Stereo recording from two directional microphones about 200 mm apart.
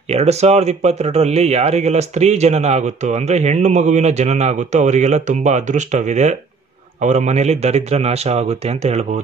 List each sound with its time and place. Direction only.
0.1 s speech: 30° right (ahead or behind)